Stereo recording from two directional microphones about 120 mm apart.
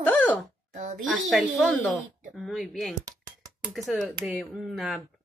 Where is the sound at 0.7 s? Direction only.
90° right.